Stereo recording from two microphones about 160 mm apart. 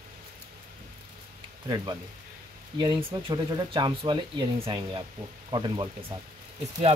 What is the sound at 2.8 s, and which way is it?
Speech, 30° right (ahead or behind).